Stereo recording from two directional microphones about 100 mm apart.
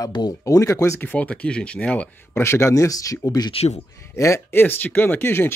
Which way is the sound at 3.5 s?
90° left.